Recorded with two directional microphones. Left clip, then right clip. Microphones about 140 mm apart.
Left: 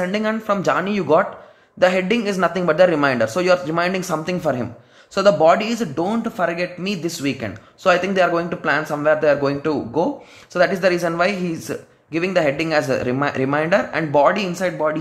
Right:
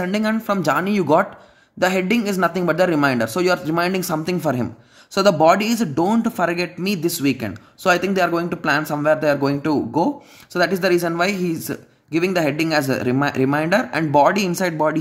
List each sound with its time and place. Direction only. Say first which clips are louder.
0.0 s a man's voice: left 1 dB; 35° right (ahead or behind)